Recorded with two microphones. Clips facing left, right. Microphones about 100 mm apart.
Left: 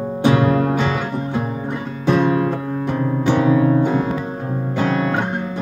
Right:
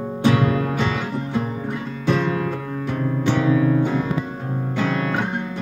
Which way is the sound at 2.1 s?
20° left (ahead or behind).